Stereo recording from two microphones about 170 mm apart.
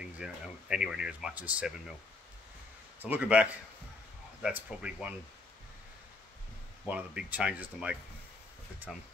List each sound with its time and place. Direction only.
0.0 s speech: 5° right (ahead or behind)
3.0 s speech: 10° right (ahead or behind)
6.9 s speech: 5° right (ahead or behind)